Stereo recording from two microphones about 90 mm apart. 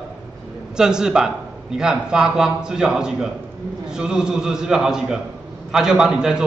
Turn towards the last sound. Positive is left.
turn(degrees=-5)  # may be behind; listen again after turning